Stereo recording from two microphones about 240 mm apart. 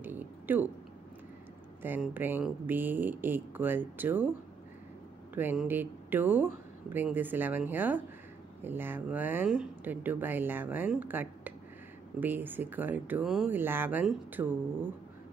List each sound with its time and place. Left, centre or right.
0.0 s speech: centre
1.8 s speech: centre
5.3 s speech: centre